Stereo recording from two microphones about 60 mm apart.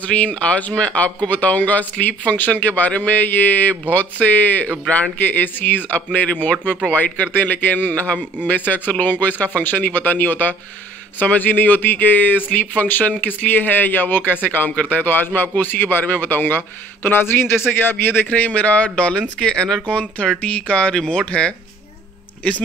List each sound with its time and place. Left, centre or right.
0.0 s speech: left